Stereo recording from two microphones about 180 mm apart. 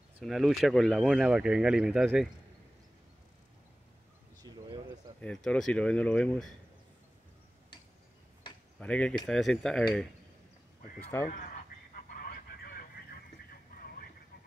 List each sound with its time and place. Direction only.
0.2 s speech: centre (ahead or behind)
4.4 s bird: 25° right (ahead or behind)
5.2 s speech: 5° left (ahead or behind)
8.7 s speech: 5° left (ahead or behind)
11.1 s speech: 10° left (ahead or behind)
11.9 s a sound: 55° left (ahead or behind)